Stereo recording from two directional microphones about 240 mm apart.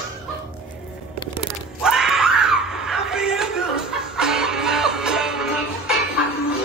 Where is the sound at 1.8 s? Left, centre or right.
Centre.